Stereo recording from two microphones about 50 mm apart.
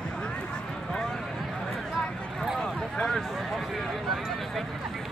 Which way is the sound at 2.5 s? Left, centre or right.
Centre.